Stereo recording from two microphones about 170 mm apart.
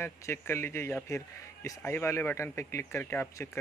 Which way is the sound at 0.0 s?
15° left (ahead or behind).